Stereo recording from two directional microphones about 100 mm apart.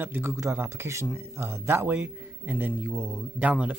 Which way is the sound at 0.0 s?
20° right (ahead or behind).